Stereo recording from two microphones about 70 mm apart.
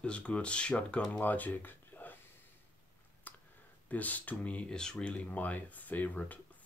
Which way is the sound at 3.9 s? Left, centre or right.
Left.